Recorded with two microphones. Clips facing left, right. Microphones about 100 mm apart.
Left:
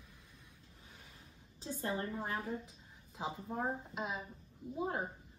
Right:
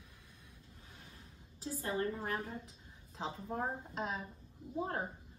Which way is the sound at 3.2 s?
5° left (ahead or behind).